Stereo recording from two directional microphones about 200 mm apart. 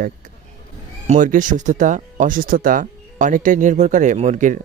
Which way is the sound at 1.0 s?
40° right (ahead or behind).